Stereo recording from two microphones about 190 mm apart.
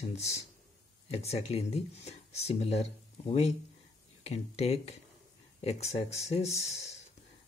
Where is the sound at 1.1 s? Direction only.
35° left (ahead or behind).